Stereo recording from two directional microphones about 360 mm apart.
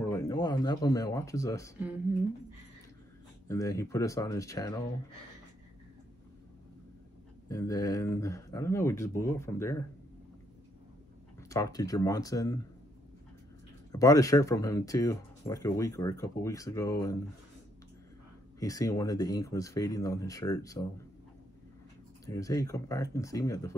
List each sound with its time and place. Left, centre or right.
0.0 s speech: centre
3.4 s speech: centre
7.4 s speech: centre
11.4 s speech: centre
13.9 s speech: centre
18.6 s speech: centre
22.2 s speech: centre